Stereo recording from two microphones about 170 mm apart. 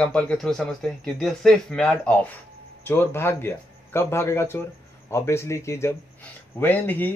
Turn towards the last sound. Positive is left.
turn(degrees=10)  # may be behind; listen again after turning